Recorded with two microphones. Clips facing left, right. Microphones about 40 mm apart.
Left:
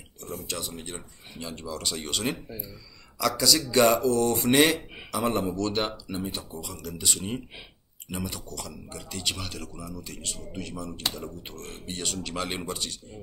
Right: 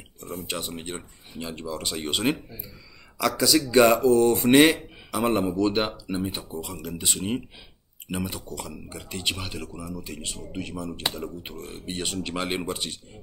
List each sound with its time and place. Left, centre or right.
0.4 s speech: right